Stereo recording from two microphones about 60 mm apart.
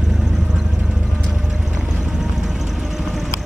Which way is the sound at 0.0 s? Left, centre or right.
Centre.